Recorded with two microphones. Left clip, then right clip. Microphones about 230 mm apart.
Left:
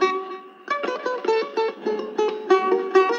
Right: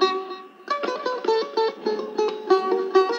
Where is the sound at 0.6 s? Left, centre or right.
Right.